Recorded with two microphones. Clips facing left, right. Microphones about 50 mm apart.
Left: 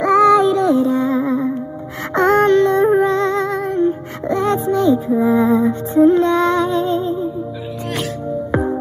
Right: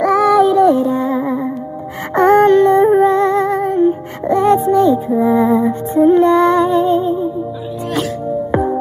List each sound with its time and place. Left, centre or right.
0.3 s synthetic singing: left
0.7 s music: right